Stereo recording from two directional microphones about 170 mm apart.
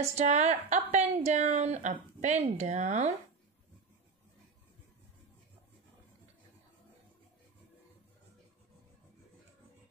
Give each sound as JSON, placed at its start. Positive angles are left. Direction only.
{"t": 0.0, "sound": "a woman's voice", "side_deg": -40}